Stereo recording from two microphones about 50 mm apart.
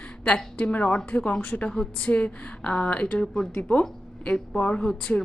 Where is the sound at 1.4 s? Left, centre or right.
Left.